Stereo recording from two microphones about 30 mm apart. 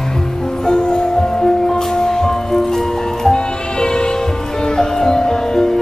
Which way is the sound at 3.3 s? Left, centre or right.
Left.